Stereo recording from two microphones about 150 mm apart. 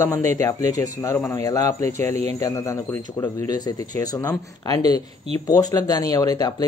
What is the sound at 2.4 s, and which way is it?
Speech, 20° left (ahead or behind).